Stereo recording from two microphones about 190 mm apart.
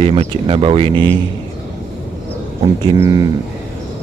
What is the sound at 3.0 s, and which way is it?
Speech, 20° right (ahead or behind).